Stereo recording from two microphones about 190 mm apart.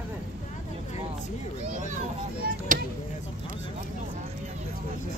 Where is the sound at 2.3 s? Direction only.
45° right (ahead or behind).